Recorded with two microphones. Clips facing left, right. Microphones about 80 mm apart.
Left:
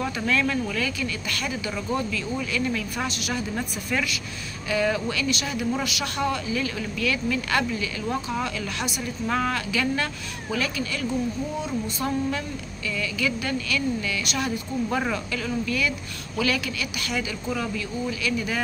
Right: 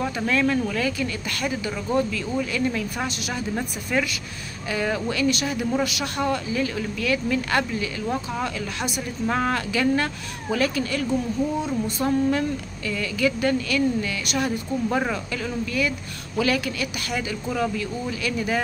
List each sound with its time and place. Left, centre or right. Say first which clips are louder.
0.0 s speech: right 2 dB; right
4.6 s speech: left 1 dB; right
8.1 s speech: even; centre
8.5 s speech: right 1 dB; right